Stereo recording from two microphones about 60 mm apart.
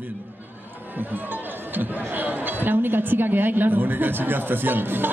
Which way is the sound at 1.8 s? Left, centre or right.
Right.